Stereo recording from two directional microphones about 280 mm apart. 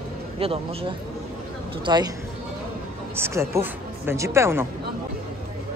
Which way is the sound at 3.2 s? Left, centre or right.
Centre.